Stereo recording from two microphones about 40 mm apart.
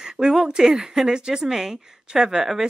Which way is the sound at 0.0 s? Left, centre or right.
Centre.